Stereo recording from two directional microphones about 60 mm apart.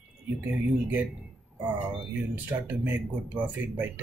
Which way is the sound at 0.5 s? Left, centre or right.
Right.